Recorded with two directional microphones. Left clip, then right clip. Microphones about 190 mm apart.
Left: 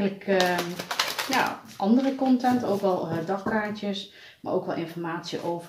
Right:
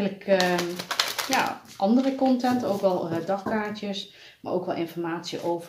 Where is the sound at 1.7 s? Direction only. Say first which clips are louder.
Right 2 dB; 45° right (ahead or behind).